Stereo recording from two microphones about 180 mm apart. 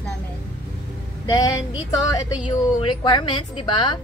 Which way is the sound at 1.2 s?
25° left (ahead or behind).